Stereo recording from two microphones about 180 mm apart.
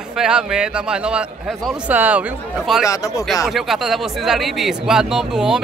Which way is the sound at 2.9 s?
20° left (ahead or behind).